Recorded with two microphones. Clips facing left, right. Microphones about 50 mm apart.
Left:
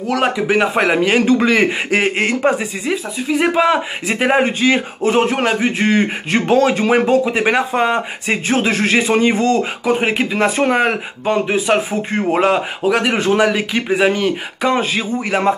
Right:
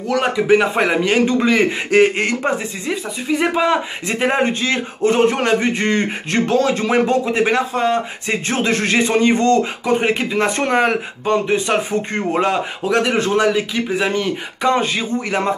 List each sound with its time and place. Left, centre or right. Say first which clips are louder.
0.1 s speech: right 1 dB; centre
7.4 s speech: left 2 dB; left
8.5 s speech: left 2 dB; centre